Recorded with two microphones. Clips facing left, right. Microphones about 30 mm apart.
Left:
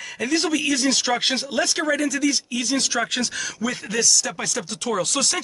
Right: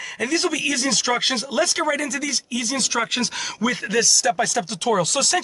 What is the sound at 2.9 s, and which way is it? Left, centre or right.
Speech, centre.